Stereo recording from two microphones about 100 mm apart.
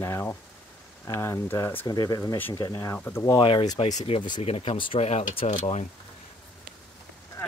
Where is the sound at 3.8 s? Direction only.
70° left (ahead or behind); by 5.4 s 90° left.